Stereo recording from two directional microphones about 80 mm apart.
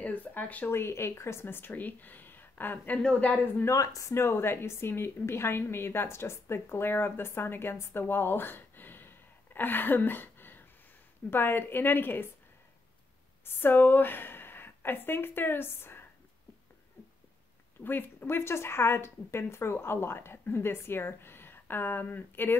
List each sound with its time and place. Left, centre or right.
0.0 s speech: left
0.7 s a woman's voice: left
3.6 s a woman's voice: left
13.6 s speech: left
17.8 s a woman's voice: left